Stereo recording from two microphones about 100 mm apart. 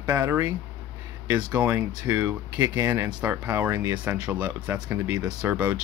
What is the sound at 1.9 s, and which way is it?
Speech, 10° right (ahead or behind).